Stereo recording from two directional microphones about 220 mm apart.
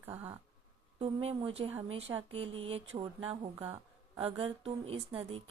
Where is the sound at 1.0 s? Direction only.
25° right (ahead or behind).